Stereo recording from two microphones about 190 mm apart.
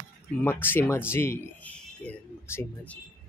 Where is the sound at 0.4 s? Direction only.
10° left (ahead or behind).